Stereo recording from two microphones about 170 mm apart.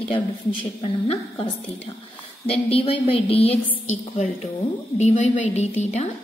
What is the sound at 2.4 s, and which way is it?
A woman's voice, 35° left (ahead or behind).